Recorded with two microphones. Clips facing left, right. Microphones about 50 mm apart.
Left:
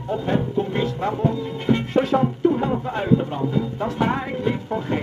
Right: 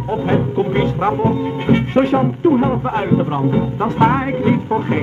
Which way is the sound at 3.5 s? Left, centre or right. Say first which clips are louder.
Right 6 dB; right.